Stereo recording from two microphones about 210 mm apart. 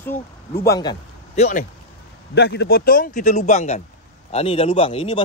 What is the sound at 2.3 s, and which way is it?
A man's voice, 55° left (ahead or behind).